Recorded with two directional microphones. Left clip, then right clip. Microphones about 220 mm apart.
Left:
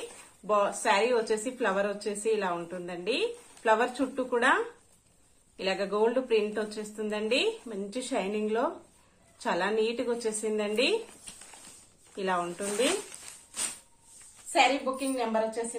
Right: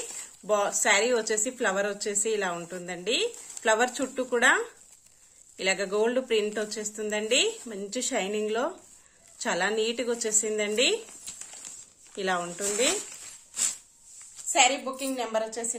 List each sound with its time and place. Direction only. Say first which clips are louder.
0.5 s speech: right 1 dB; 35° right (ahead or behind)
12.2 s speech: right 1 dB; 35° right (ahead or behind)
14.5 s speech: right 1 dB; 35° right (ahead or behind)